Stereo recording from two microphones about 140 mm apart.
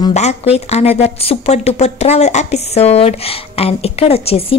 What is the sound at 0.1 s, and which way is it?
A woman's voice, 50° left (ahead or behind).